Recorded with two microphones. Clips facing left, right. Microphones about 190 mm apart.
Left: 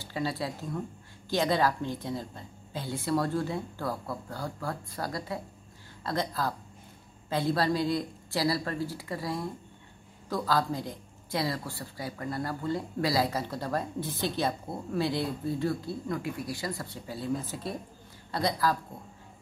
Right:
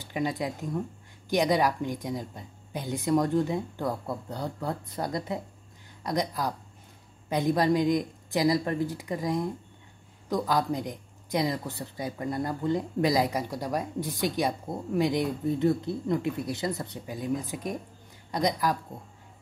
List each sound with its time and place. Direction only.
0.0 s a woman's voice: 15° right (ahead or behind)